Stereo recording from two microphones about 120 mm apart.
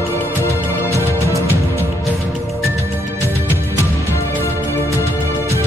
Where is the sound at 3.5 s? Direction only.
20° left (ahead or behind).